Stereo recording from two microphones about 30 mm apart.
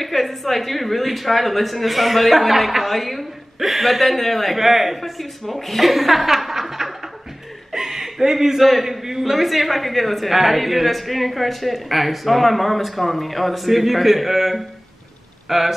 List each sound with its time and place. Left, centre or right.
0.0 s a woman's voice: centre
4.6 s a woman's voice: centre
5.2 s speech: centre
7.7 s chuckle: centre
8.5 s a woman's voice: centre
8.8 s a woman's voice: centre